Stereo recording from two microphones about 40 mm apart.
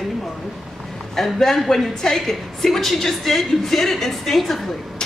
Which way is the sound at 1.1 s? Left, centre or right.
Centre.